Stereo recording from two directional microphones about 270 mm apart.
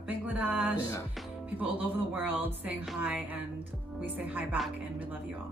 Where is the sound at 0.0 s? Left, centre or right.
Centre.